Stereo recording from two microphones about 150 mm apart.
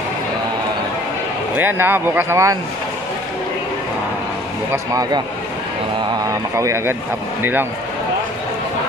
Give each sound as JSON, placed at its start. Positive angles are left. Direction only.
{"t": 1.6, "sound": "speech", "side_deg": -15}
{"t": 6.2, "sound": "a man's voice", "side_deg": -20}